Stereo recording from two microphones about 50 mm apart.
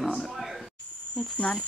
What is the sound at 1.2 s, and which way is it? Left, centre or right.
Speech, centre.